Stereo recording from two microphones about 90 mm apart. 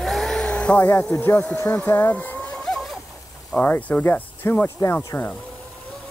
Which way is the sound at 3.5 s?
15° left (ahead or behind).